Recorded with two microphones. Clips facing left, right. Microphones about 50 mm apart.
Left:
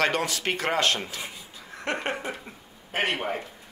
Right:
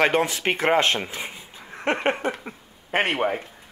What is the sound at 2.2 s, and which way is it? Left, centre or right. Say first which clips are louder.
Speech: right 6 dB; right.